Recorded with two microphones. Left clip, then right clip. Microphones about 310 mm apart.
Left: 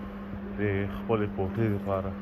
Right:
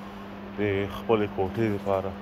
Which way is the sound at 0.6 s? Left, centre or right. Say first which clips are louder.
Right 4 dB; centre.